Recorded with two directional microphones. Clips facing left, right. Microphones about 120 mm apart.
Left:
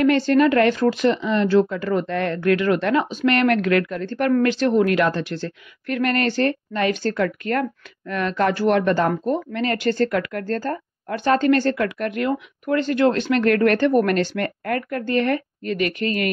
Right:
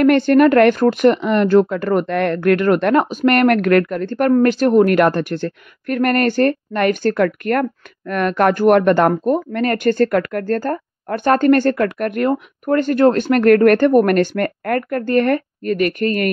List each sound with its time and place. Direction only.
0.0 s speech: 55° right (ahead or behind)